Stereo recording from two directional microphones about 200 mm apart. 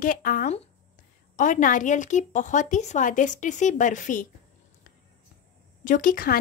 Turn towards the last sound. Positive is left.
turn(degrees=45)  # may be behind; listen again after turning